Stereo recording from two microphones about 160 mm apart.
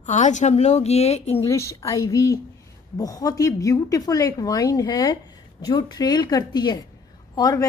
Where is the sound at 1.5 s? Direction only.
20° left (ahead or behind).